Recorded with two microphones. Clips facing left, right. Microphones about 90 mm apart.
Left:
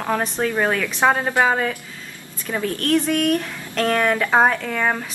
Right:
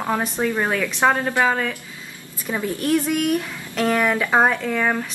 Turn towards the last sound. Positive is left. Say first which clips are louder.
# right 1 dB
turn(degrees=5)  # may be behind; listen again after turning